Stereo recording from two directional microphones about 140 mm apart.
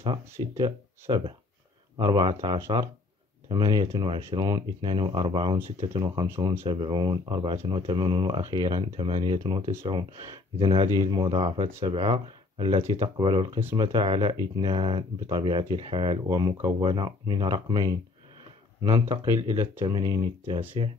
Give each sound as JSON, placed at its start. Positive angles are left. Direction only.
{"t": 0.0, "sound": "speech", "side_deg": -35}
{"t": 3.9, "sound": "speech", "side_deg": -40}
{"t": 18.9, "sound": "speech", "side_deg": -25}